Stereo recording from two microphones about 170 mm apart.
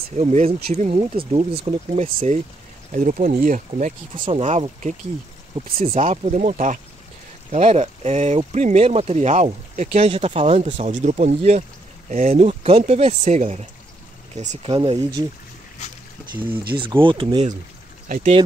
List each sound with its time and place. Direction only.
0.2 s speech: 40° right (ahead or behind)
14.7 s speech: 30° right (ahead or behind)
16.7 s speech: 30° right (ahead or behind)
18.0 s speech: 50° right (ahead or behind)